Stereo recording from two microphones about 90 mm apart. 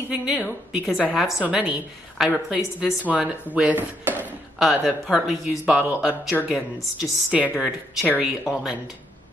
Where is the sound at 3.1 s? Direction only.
10° right (ahead or behind).